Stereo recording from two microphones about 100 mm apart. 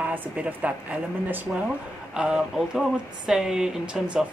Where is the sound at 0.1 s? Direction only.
20° right (ahead or behind).